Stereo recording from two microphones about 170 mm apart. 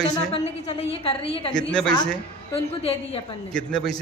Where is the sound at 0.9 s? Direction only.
35° left (ahead or behind).